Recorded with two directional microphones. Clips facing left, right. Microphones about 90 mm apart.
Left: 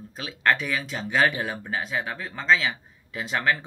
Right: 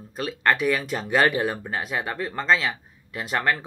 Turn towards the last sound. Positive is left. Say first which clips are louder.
# right 1 dB
turn(degrees=-5)  # may be behind; listen again after turning